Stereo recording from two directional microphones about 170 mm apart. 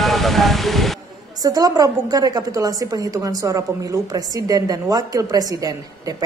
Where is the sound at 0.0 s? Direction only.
Centre (ahead or behind).